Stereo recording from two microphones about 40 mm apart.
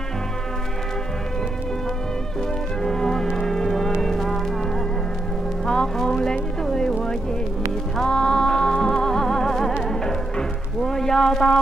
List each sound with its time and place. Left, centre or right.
2.8 s music: centre
5.7 s music: centre
10.8 s a sound: centre